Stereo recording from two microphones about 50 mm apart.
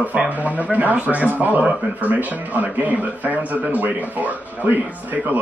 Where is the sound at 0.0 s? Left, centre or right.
Right.